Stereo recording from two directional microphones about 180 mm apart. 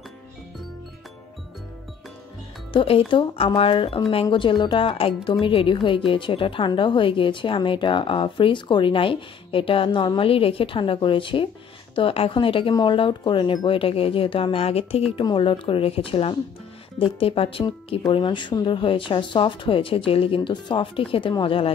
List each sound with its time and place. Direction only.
2.7 s speech: 30° left (ahead or behind)